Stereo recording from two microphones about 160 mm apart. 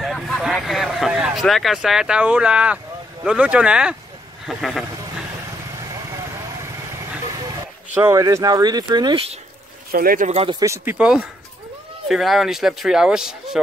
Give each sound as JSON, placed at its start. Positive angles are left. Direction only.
{"t": 0.0, "sound": "speech", "side_deg": 0}
{"t": 5.8, "sound": "vehicle", "side_deg": -20}
{"t": 7.9, "sound": "speech", "side_deg": -10}
{"t": 9.8, "sound": "speech", "side_deg": -65}
{"t": 10.3, "sound": "a man's voice", "side_deg": -35}
{"t": 10.6, "sound": "speech", "side_deg": -20}
{"t": 11.0, "sound": "speech", "side_deg": -5}